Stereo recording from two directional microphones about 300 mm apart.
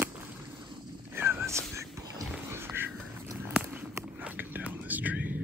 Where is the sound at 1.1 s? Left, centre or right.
Centre.